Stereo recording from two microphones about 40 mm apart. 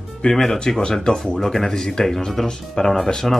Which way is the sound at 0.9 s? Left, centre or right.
Centre.